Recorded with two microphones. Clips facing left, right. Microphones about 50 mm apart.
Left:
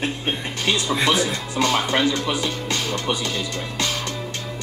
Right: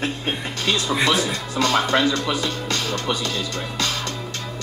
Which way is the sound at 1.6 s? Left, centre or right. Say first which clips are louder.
Even; left.